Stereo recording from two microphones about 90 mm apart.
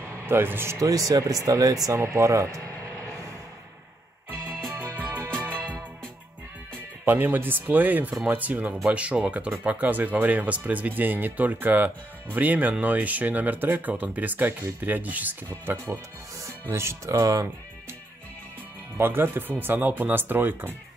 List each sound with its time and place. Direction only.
0.0 s a man's voice: 30° right (ahead or behind)
0.7 s speech: 40° right (ahead or behind)
5.0 s music: 25° right (ahead or behind)
7.1 s speech: 20° right (ahead or behind); by 17.5 s 40° right (ahead or behind)
18.9 s speech: 25° right (ahead or behind)